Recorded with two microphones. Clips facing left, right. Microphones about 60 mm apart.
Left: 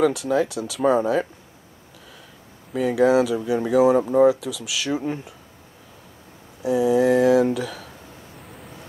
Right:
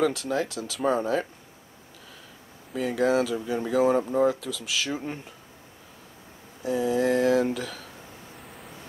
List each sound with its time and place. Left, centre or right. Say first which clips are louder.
0.0 s speech: left 5 dB; centre
2.7 s speech: left 6 dB; centre
6.6 s speech: left 6 dB; centre
8.4 s vehicle: left 2 dB; centre